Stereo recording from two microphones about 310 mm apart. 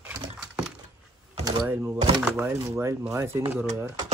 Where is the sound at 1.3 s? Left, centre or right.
Centre.